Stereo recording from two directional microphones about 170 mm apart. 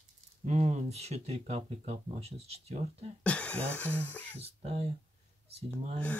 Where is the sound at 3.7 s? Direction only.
10° left (ahead or behind).